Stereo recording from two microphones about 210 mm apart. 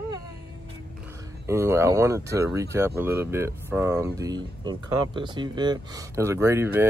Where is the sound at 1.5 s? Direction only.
15° right (ahead or behind).